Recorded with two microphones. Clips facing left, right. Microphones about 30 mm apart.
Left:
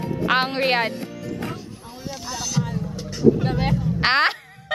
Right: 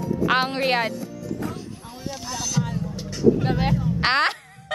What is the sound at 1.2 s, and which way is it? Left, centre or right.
Music, left.